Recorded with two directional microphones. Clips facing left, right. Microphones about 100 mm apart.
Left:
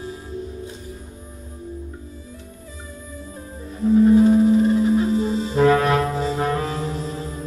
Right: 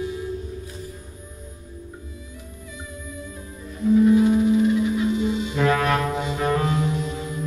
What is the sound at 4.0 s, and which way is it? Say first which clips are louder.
Music: left 4 dB; 35° left (ahead or behind).